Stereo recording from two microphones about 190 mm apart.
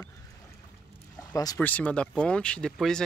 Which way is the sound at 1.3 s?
20° left (ahead or behind).